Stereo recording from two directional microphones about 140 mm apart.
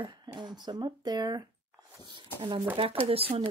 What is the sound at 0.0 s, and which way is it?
Speech, 30° right (ahead or behind).